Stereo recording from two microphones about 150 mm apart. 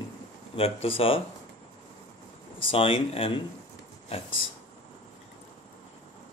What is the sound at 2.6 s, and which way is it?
Speech, 35° left (ahead or behind).